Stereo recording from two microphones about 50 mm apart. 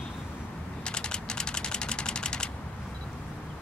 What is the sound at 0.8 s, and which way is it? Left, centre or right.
Typewriter, centre.